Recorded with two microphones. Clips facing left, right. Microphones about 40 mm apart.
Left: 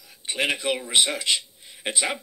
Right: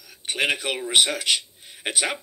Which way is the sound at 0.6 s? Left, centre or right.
Right.